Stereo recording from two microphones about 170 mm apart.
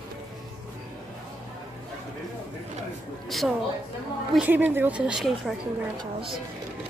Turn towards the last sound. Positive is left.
turn(degrees=-5)  # may be behind; listen again after turning